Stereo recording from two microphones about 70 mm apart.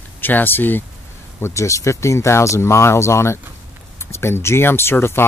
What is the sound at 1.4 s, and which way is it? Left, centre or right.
Speech, left.